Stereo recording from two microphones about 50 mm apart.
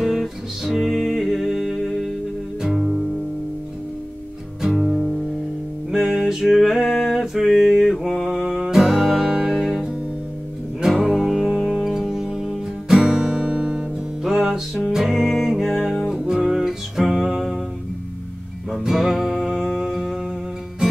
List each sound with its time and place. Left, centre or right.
0.0 s music: centre
4.7 s music: centre
11.1 s music: centre
18.8 s music: centre